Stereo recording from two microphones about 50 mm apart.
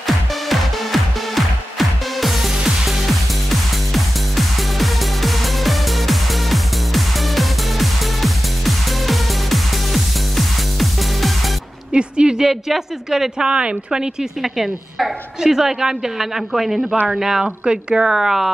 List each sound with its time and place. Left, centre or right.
0.0 s music: centre
11.9 s speech: centre
14.4 s a woman's voice: centre